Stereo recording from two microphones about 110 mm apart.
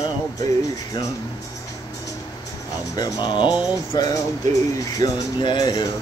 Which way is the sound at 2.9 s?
40° left (ahead or behind).